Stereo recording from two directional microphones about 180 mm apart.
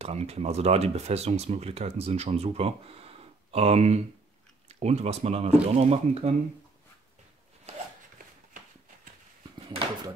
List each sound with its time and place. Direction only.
0.0 s speech: 35° right (ahead or behind)